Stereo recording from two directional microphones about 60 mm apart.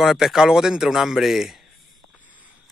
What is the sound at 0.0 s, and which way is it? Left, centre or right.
A man's voice, centre.